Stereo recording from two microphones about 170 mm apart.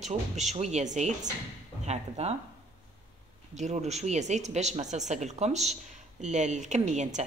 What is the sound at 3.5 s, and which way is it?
A woman's voice, 40° right (ahead or behind).